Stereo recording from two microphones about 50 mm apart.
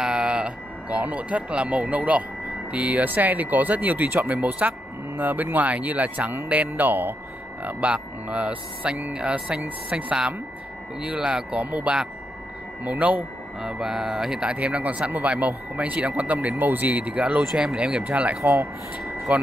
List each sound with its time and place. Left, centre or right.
0.0 s music: centre
2.7 s speech: right
7.6 s speech: right
13.6 s speech: centre; by 18.4 s right
18.4 s speech: right
19.3 s speech: right